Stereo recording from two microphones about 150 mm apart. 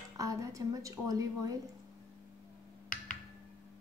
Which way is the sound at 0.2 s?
20° right (ahead or behind).